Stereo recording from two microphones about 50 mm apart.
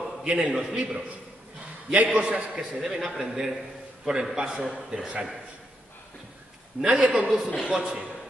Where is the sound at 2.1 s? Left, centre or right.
Right.